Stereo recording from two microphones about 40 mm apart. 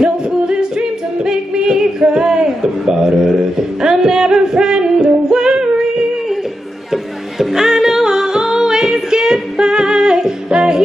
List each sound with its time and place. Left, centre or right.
0.0 s singing: right
6.9 s music: centre